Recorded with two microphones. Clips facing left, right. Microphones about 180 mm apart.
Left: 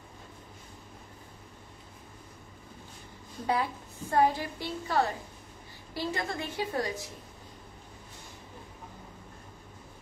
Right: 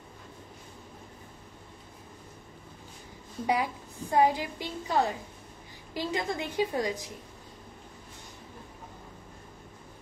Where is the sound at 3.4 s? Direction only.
15° right (ahead or behind).